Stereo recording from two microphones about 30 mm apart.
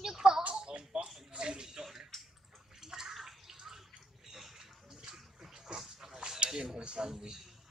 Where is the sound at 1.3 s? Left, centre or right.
Right.